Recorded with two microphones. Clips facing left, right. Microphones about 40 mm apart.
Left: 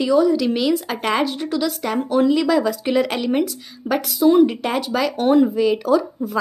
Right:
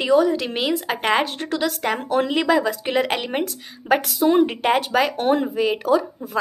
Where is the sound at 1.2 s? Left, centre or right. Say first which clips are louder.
Left 2 dB; right.